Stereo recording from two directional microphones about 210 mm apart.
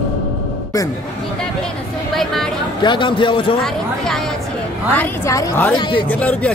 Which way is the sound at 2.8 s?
20° left (ahead or behind).